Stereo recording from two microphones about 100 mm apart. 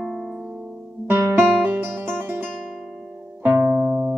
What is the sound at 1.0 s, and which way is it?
Music, 20° right (ahead or behind).